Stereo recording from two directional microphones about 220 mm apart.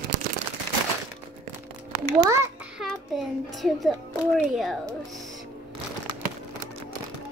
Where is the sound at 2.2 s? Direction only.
10° right (ahead or behind).